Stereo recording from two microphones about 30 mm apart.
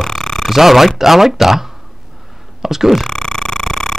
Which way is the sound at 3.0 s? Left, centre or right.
Left.